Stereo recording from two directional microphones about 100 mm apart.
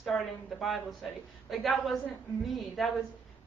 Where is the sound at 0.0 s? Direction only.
Centre (ahead or behind).